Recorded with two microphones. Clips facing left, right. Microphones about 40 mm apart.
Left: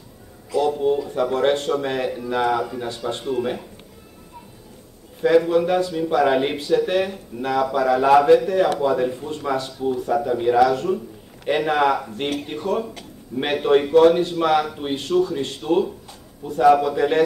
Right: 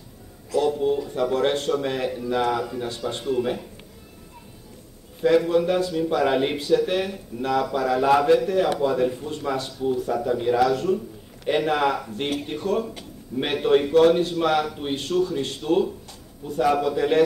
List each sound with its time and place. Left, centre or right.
0.6 s a sound: centre
1.0 s speech: centre
5.2 s speech: centre